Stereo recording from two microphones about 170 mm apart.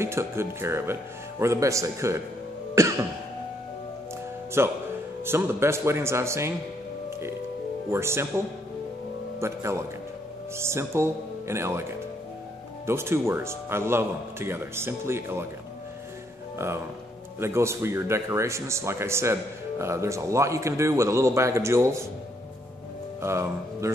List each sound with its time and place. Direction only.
0.0 s a man's voice: 15° right (ahead or behind)
2.7 s cough: 15° right (ahead or behind)
4.6 s a man's voice: 15° right (ahead or behind)
7.9 s a man's voice: 15° right (ahead or behind)
9.4 s a man's voice: 15° right (ahead or behind)
12.8 s a man's voice: 15° right (ahead or behind)
16.5 s a man's voice: 15° right (ahead or behind)
23.2 s speech: 15° right (ahead or behind)